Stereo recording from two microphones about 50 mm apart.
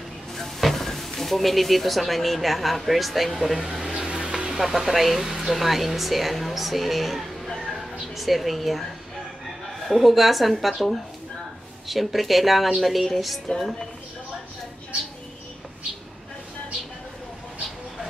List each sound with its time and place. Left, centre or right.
0.4 s speech: centre
4.0 s vehicle: centre
4.6 s speech: centre
7.6 s music: centre
9.8 s speech: centre